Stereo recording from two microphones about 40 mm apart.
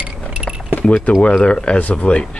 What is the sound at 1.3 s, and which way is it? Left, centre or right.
Speech, left.